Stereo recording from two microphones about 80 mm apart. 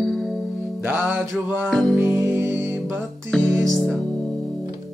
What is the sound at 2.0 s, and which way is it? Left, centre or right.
Music, right.